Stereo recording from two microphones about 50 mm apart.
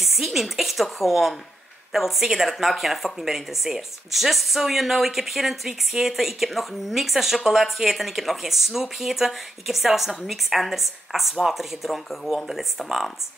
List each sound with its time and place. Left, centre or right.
0.0 s a woman's voice: centre